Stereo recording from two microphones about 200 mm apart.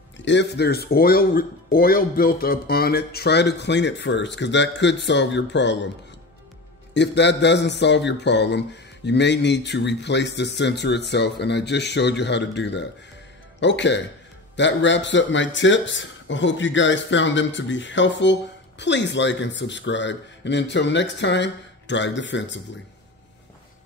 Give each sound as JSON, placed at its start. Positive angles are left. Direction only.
{"t": 0.2, "sound": "speech", "side_deg": 60}
{"t": 6.9, "sound": "speech", "side_deg": 60}